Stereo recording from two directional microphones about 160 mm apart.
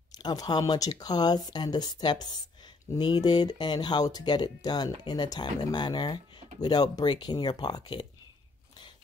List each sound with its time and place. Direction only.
0.2 s speech: 25° left (ahead or behind)